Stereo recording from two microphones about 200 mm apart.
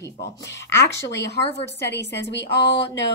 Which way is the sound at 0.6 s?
15° left (ahead or behind).